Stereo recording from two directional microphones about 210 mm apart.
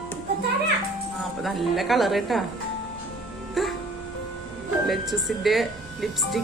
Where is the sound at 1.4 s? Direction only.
Centre (ahead or behind).